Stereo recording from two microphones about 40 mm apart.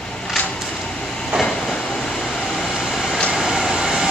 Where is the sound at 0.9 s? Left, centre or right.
Centre.